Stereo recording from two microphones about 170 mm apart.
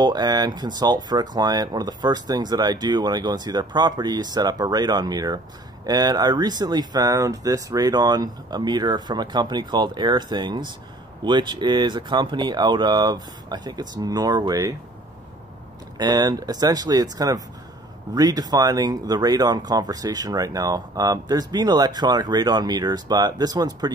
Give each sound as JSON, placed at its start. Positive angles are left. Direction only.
{"t": 0.0, "sound": "speech", "side_deg": -25}
{"t": 16.0, "sound": "speech", "side_deg": -25}